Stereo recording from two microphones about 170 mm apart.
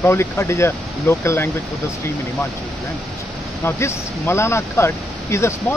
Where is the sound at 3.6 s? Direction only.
15° left (ahead or behind).